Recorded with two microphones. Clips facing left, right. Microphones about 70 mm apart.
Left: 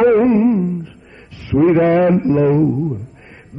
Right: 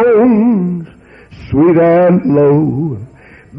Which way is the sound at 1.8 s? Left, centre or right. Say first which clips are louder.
Right 5 dB; right.